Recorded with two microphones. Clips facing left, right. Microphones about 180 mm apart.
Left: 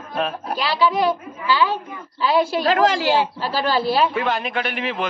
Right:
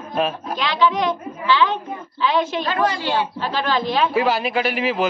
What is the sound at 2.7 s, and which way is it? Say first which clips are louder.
Speech: left 4 dB; 90° left.